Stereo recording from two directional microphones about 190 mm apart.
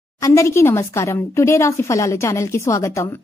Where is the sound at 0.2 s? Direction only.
15° left (ahead or behind).